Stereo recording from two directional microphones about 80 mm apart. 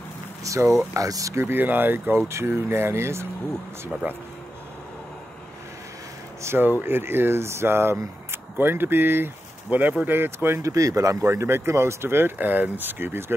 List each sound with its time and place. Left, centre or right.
0.4 s speech: right
1.3 s speech: right
6.4 s speech: right
10.7 s speech: right